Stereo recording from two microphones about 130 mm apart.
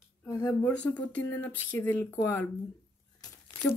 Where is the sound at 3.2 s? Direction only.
20° left (ahead or behind).